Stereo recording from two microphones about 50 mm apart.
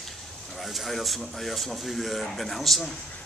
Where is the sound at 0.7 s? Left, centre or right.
Centre.